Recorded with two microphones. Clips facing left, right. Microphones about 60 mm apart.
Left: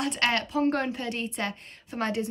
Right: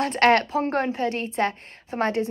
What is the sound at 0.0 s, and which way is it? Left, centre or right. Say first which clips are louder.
A woman's voice: right 8 dB; right.